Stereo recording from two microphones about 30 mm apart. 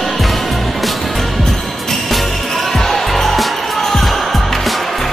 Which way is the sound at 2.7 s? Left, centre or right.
Centre.